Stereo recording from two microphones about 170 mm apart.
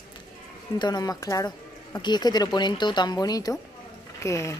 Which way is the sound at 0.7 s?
25° left (ahead or behind).